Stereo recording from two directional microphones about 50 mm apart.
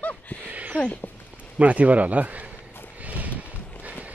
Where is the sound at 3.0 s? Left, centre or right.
Right.